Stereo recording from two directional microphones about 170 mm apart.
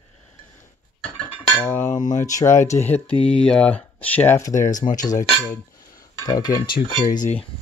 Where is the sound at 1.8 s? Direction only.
45° left (ahead or behind).